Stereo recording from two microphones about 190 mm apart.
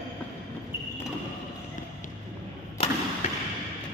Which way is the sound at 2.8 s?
30° left (ahead or behind).